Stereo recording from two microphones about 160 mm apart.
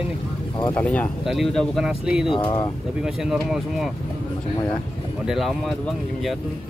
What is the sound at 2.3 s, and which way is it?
Speech, 25° left (ahead or behind).